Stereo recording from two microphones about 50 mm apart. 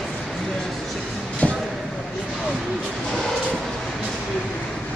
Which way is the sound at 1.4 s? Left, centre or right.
Left.